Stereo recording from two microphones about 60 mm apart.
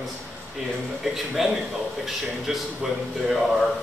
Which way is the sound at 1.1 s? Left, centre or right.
Centre.